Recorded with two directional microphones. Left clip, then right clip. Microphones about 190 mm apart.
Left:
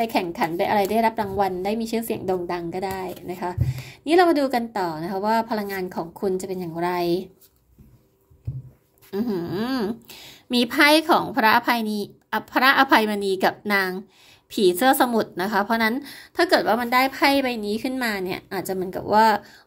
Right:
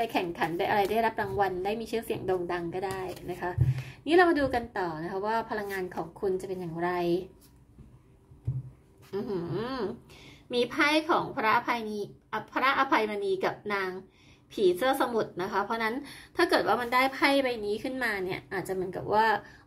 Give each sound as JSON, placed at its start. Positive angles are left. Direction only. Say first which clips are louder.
{"t": 0.0, "sound": "a woman's voice", "louder": "left 6 dB", "side_deg": 25}
{"t": 9.1, "sound": "a woman's voice", "louder": "left 6 dB", "side_deg": 35}